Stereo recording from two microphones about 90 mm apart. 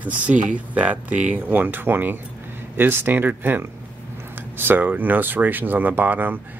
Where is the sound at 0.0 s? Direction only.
15° right (ahead or behind).